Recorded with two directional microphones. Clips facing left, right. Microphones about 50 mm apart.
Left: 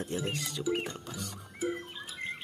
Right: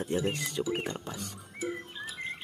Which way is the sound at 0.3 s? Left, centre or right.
Right.